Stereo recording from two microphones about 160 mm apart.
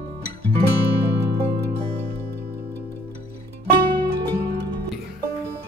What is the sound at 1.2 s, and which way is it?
Music, 90° right.